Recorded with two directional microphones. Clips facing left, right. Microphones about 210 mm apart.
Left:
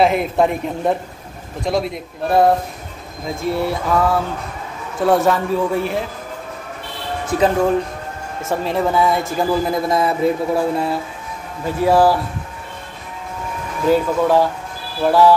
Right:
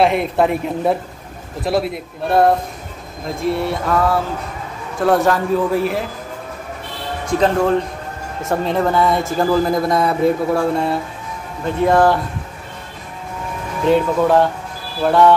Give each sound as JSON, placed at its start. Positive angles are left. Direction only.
{"t": 0.0, "sound": "a man's voice", "side_deg": 0}
{"t": 7.2, "sound": "a man's voice", "side_deg": 5}
{"t": 13.8, "sound": "a man's voice", "side_deg": 0}